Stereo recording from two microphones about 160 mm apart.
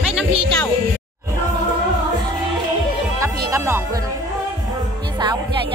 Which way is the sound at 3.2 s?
20° right (ahead or behind).